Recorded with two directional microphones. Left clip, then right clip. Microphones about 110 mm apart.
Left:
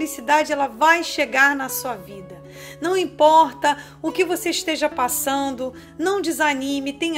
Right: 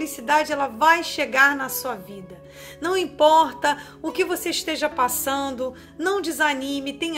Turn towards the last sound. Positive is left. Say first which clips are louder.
# left 3 dB
turn(degrees=40)  # may be behind; listen again after turning